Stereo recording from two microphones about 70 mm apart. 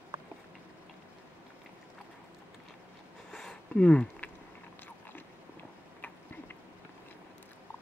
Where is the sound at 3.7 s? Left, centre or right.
Centre.